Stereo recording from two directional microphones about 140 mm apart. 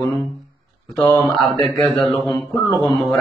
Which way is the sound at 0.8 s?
5° left (ahead or behind).